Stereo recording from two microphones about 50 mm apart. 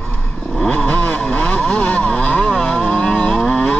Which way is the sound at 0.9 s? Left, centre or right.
Left.